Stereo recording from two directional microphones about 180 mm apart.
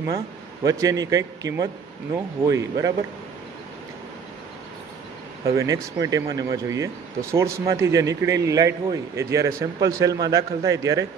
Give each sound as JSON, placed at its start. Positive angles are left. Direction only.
{"t": 0.7, "sound": "a man's voice", "side_deg": -20}
{"t": 5.4, "sound": "a man's voice", "side_deg": -15}